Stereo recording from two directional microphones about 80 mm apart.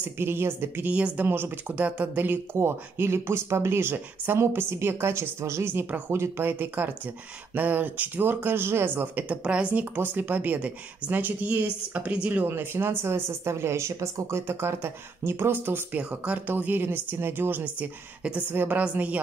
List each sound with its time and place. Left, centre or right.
0.0 s speech: right
0.9 s a woman's voice: centre
1.2 s speech: right
12.4 s speech: right